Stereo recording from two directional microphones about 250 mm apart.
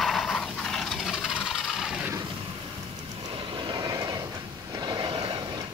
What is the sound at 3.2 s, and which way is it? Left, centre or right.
Vehicle, centre.